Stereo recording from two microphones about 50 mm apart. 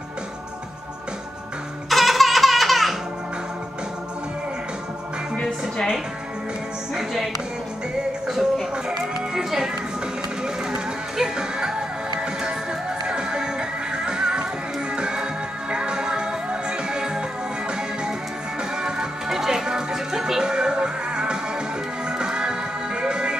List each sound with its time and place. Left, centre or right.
1.9 s baby laughter: centre
5.3 s music: centre
8.3 s music: centre
18.8 s music: centre